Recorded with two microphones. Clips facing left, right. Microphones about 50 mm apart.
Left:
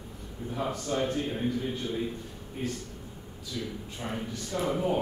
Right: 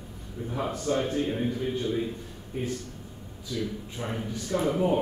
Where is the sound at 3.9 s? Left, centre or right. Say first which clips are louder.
Even; centre.